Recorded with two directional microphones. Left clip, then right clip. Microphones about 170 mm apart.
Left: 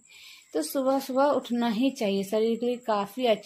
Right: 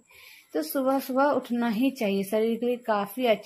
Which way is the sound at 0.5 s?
10° right (ahead or behind).